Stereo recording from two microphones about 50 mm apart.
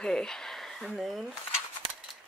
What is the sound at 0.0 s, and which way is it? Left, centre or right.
Speech, centre.